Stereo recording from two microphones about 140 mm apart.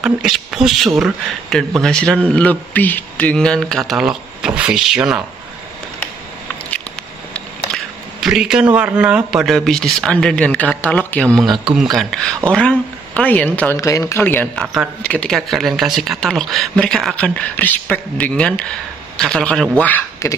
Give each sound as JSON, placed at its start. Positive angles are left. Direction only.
{"t": 0.0, "sound": "speech", "side_deg": -5}
{"t": 7.7, "sound": "a sound", "side_deg": 5}
{"t": 8.2, "sound": "speech", "side_deg": -5}
{"t": 20.2, "sound": "speech", "side_deg": 20}